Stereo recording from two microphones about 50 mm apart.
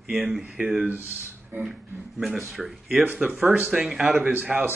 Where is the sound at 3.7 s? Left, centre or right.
Centre.